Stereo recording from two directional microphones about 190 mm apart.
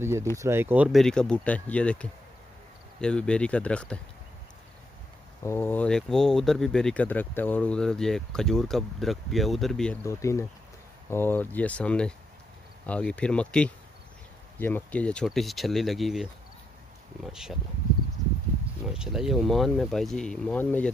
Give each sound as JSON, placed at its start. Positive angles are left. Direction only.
{"t": 0.0, "sound": "speech", "side_deg": -15}
{"t": 0.9, "sound": "speech", "side_deg": 5}
{"t": 5.4, "sound": "speech", "side_deg": 10}
{"t": 10.0, "sound": "speech", "side_deg": 15}
{"t": 17.3, "sound": "speech", "side_deg": -5}
{"t": 18.9, "sound": "speech", "side_deg": 0}